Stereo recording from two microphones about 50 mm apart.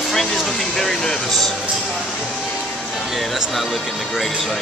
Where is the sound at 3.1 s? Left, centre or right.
Centre.